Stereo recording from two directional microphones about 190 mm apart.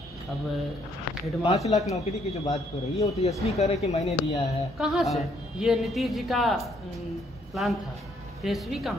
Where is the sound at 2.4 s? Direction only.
15° left (ahead or behind).